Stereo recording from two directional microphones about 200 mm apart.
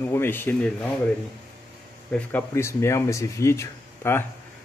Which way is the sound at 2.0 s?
5° left (ahead or behind).